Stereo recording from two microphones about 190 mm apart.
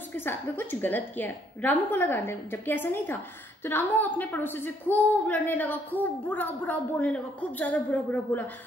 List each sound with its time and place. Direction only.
0.1 s a woman's voice: 10° left (ahead or behind)